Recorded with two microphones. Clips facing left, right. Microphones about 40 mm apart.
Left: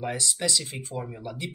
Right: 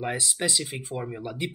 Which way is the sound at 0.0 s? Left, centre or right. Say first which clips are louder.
Right 1 dB; right.